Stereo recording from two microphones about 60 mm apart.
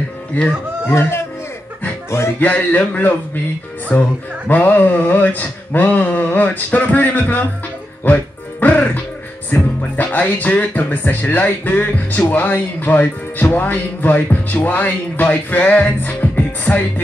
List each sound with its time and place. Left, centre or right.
0.3 s speech: left
0.8 s speech: left
2.0 s music: left
2.4 s speech: left
4.5 s speech: left
8.0 s music: left
9.5 s speech: left